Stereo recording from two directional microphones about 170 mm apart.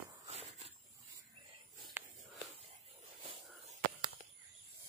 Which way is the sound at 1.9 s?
10° right (ahead or behind).